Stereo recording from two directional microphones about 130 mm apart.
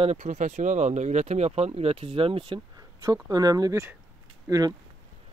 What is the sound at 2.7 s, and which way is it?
Speech, 30° right (ahead or behind).